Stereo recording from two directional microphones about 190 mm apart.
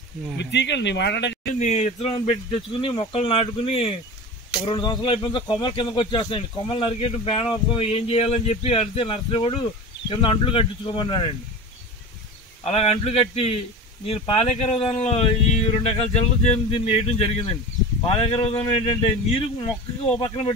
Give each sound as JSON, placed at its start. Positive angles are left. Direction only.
{"t": 0.4, "sound": "speech", "side_deg": 65}
{"t": 1.6, "sound": "speech", "side_deg": 35}
{"t": 12.6, "sound": "speech", "side_deg": 30}